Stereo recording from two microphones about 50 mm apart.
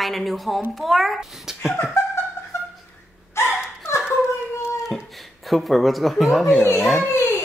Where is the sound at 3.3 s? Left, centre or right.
Left.